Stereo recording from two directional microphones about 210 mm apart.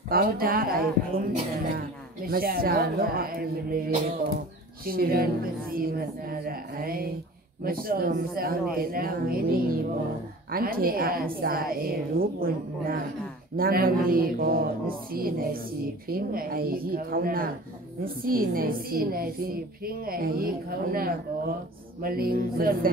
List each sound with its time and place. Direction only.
0.1 s a woman's voice: 45° right (ahead or behind)
2.2 s a woman's voice: 45° right (ahead or behind)